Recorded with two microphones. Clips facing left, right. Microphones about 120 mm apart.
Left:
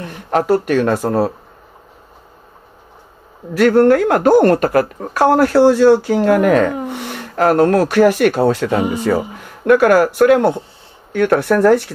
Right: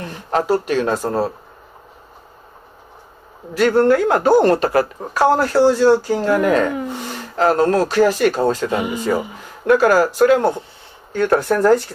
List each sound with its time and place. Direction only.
0.0 s speech: 60° left (ahead or behind)
3.5 s speech: 60° left (ahead or behind)